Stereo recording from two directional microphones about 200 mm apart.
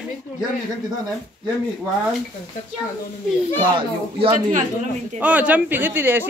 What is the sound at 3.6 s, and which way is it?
Speech, 25° right (ahead or behind).